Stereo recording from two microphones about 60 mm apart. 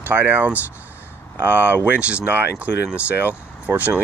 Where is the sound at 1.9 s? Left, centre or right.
Right.